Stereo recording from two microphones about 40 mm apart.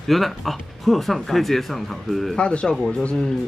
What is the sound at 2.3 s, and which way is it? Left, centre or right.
Speech, left.